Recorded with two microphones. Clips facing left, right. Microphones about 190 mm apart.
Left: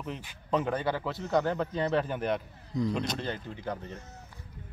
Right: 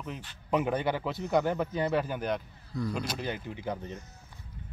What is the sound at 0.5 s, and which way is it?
A man's voice, 15° right (ahead or behind).